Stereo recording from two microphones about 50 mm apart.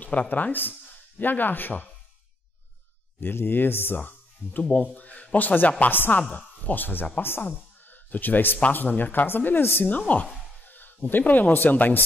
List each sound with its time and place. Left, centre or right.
0.0 s speech: left
3.2 s speech: left
7.4 s music: left
8.5 s speech: left
9.8 s a woman's voice: left